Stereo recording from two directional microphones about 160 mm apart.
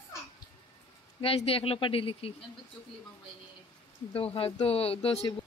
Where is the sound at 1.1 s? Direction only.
35° left (ahead or behind).